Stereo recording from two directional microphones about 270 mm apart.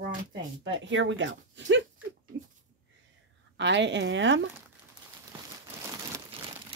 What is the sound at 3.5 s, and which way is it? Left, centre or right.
Speech, right.